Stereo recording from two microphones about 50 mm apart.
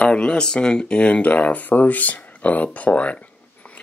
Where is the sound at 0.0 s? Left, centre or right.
Centre.